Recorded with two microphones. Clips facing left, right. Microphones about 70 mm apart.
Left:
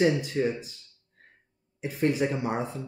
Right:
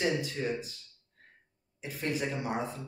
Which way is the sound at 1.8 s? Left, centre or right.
Left.